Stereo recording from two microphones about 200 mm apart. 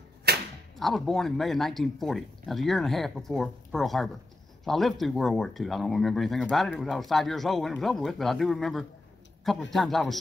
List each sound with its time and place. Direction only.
0.3 s arrow: 50° right (ahead or behind)
0.7 s speech: centre (ahead or behind)